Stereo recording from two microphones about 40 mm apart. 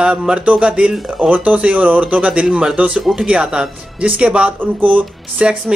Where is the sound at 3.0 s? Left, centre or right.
Centre.